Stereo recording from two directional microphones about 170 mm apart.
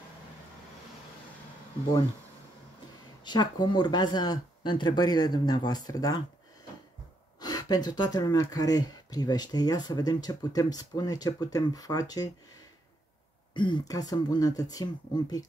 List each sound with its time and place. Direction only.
3.3 s speech: 25° left (ahead or behind)
7.3 s speech: 25° left (ahead or behind)
13.5 s speech: 25° left (ahead or behind)